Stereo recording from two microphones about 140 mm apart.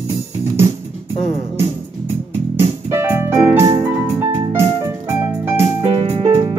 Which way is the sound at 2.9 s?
15° right (ahead or behind).